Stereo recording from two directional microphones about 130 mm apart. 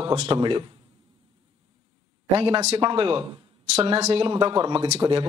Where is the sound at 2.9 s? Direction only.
45° right (ahead or behind).